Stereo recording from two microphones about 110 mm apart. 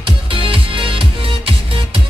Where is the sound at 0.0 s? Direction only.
55° right (ahead or behind).